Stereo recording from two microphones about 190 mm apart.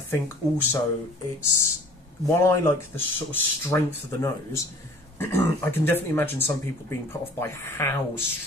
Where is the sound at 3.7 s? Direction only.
15° left (ahead or behind).